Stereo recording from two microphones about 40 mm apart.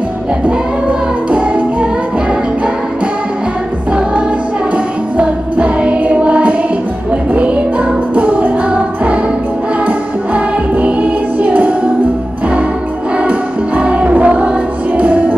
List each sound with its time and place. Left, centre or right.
0.5 s music: right
5.1 s music: right
8.1 s music: right
13.2 s music: right